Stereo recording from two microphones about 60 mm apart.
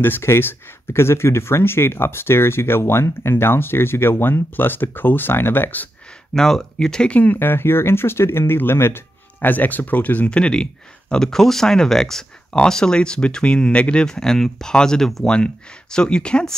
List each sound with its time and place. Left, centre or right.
0.0 s speech: left
6.3 s speech: centre
7.3 s speech: left; by 16.5 s centre